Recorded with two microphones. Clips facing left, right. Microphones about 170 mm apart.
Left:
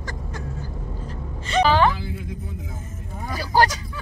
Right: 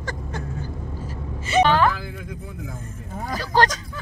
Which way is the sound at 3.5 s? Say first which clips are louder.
Left 1 dB; 10° left (ahead or behind).